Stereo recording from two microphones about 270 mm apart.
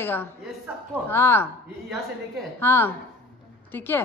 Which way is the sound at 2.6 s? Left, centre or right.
Centre.